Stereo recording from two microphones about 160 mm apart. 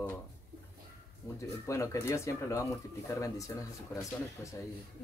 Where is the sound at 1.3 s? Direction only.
20° left (ahead or behind).